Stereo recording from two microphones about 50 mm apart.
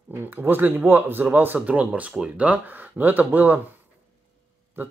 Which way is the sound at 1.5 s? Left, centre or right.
Right.